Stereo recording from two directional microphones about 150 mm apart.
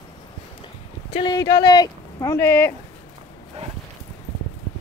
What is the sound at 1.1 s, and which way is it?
Speech, 30° left (ahead or behind).